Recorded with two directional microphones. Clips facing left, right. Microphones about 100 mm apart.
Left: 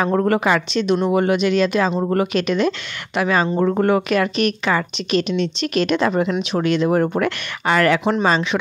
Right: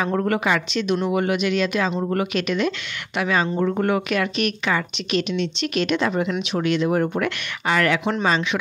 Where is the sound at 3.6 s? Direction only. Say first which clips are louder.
Left 4 dB; 50° left (ahead or behind).